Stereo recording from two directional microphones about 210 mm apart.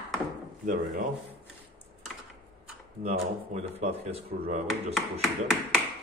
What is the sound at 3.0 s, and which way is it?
Speech, 30° right (ahead or behind).